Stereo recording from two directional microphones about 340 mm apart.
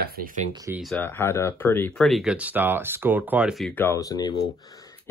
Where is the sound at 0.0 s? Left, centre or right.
Right.